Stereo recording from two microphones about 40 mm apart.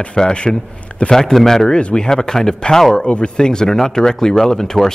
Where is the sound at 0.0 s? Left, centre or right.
Left.